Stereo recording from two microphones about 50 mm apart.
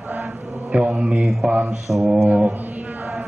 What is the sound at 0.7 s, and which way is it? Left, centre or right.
Mantra, centre.